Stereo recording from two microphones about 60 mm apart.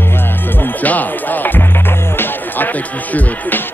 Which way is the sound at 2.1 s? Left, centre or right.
Left.